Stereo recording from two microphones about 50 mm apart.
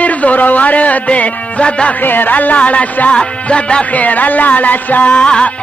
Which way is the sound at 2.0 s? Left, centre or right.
Left.